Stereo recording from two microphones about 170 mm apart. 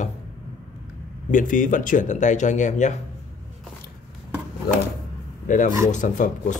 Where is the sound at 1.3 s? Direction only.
50° left (ahead or behind).